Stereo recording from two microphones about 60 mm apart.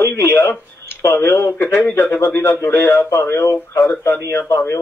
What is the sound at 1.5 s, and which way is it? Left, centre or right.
A man's voice, left.